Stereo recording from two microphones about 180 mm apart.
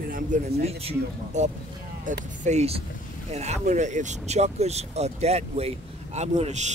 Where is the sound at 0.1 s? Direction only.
40° right (ahead or behind).